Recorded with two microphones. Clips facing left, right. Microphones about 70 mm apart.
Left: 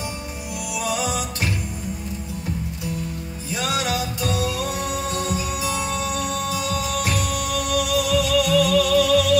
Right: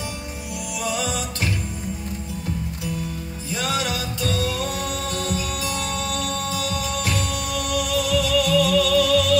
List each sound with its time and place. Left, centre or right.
0.8 s music: centre
3.6 s music: centre